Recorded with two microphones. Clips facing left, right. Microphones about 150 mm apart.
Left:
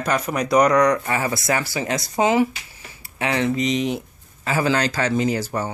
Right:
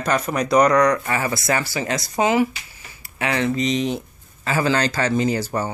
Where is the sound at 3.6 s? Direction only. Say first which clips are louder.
Even; 10° left (ahead or behind).